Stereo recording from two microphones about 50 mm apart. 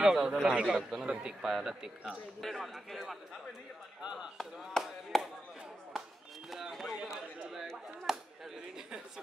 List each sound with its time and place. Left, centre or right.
0.0 s speech: centre
0.5 s a man's voice: right; by 3.2 s centre
4.0 s speech: centre
4.4 s speech: centre
6.5 s speech: centre